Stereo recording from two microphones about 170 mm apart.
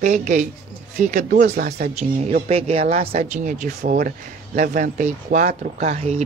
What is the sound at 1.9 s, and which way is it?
Speech, 40° right (ahead or behind).